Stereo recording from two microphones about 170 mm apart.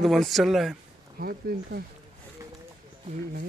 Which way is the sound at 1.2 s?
60° right (ahead or behind).